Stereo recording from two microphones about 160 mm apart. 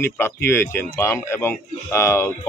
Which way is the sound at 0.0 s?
15° left (ahead or behind).